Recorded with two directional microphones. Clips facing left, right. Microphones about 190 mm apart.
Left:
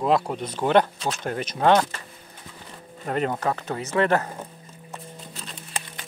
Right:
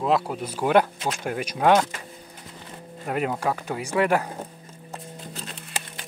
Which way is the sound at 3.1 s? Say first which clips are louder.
Left 1 dB; 10° right (ahead or behind).